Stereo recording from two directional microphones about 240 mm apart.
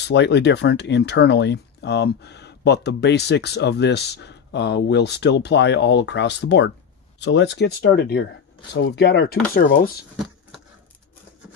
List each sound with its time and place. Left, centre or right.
0.0 s speech: left